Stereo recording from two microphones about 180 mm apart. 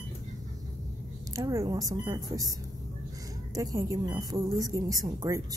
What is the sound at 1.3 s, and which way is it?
A woman's voice, 20° right (ahead or behind).